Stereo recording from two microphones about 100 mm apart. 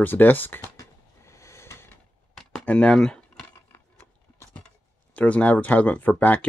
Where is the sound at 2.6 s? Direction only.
10° left (ahead or behind).